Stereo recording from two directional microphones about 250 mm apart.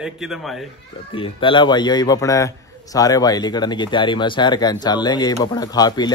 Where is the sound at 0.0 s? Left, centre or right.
Centre.